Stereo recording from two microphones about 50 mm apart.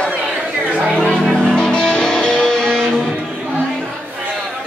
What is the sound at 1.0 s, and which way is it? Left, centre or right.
Music, centre.